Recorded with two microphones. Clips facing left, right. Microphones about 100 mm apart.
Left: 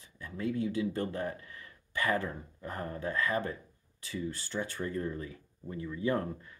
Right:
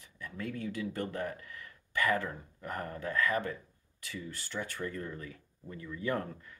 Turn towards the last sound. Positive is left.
turn(degrees=25)  # may be behind; listen again after turning